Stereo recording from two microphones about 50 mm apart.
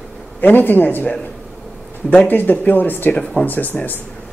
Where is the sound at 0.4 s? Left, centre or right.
Left.